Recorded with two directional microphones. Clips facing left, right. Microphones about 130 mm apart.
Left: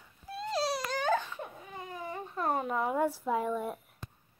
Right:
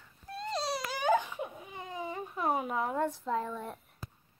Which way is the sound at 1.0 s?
15° right (ahead or behind).